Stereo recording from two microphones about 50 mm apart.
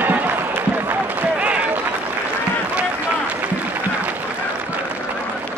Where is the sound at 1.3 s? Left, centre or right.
Right.